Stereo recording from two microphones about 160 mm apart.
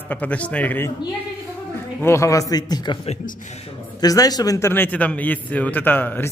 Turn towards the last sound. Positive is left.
turn(degrees=10)  # may be behind; listen again after turning